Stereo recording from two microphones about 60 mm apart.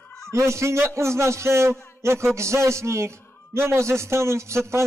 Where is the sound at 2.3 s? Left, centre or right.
Right.